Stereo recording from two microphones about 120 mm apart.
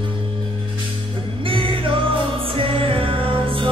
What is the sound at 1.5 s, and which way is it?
Music, 45° right (ahead or behind).